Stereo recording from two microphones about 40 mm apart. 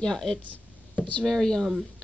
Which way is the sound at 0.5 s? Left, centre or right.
Left.